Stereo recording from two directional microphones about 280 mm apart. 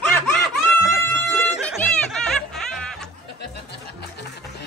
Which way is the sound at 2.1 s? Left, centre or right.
Centre.